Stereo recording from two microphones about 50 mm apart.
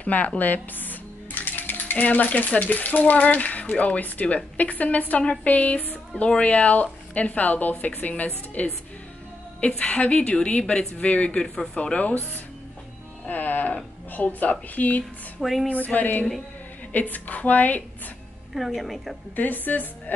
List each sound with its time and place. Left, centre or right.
0.0 s speech: left
0.4 s cutlery: left
4.6 s a woman's voice: left
13.3 s music: left
14.1 s speech: left
15.4 s speech: centre
15.7 s speech: left
18.5 s speech: centre
19.3 s speech: left